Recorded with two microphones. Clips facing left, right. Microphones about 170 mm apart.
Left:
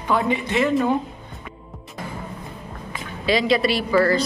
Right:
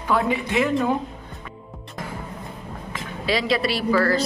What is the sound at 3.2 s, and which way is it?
Speech, centre (ahead or behind).